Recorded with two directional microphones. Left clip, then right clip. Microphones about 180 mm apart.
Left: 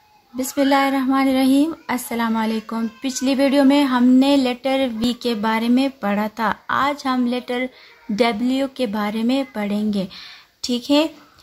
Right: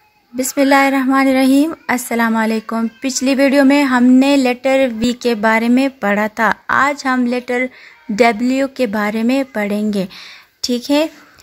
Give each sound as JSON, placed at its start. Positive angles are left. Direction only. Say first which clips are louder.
{"t": 0.4, "sound": "a woman's voice", "louder": "right 5 dB", "side_deg": -35}